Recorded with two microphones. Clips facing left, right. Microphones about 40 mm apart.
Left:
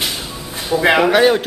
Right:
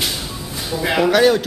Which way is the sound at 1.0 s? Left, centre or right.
Left.